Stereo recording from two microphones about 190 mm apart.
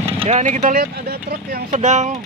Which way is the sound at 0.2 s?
35° right (ahead or behind).